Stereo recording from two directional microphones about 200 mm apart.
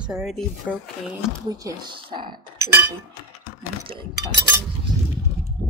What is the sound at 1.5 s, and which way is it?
Speech, 20° right (ahead or behind).